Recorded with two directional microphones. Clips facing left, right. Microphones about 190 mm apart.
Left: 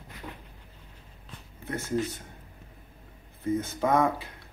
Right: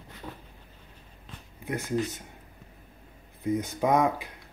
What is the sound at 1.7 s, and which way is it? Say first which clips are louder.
Speech: even; 15° right (ahead or behind).